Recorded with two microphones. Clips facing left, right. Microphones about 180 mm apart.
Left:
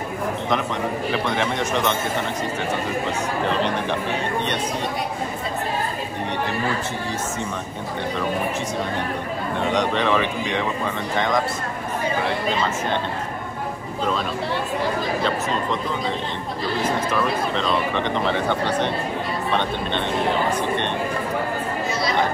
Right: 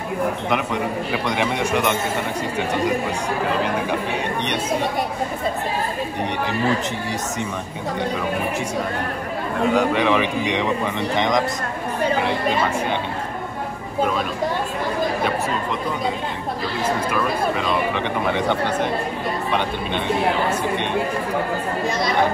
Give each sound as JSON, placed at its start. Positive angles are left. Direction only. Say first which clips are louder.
{"t": 1.1, "sound": "speech", "louder": "right 2 dB", "side_deg": -15}
{"t": 9.6, "sound": "speech", "louder": "right 4 dB", "side_deg": -5}
{"t": 17.1, "sound": "speech", "louder": "right 1 dB", "side_deg": -10}
{"t": 20.4, "sound": "speech", "louder": "even", "side_deg": -10}